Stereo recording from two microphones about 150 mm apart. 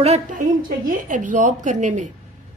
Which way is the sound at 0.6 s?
60° right (ahead or behind).